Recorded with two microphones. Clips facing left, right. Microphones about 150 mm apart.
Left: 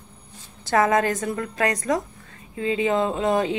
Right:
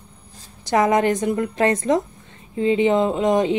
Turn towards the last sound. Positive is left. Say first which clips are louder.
# right 3 dB
turn(degrees=-20)  # may be behind; listen again after turning